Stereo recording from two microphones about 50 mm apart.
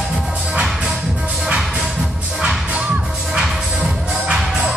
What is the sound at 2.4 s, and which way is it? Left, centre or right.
Music, centre.